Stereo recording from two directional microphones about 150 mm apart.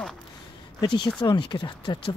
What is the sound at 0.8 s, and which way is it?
Speech, 30° left (ahead or behind).